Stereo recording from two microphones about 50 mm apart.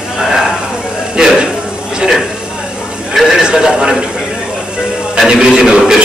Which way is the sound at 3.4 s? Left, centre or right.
Centre.